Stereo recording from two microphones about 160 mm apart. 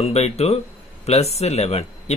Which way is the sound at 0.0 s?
40° left (ahead or behind).